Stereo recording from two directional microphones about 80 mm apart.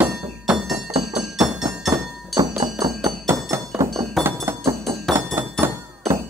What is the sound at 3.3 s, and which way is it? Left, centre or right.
Music, right.